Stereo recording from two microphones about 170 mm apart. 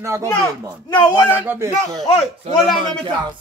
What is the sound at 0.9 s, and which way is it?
Speech, 25° left (ahead or behind).